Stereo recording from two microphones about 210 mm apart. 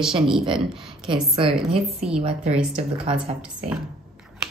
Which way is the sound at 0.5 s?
Centre (ahead or behind).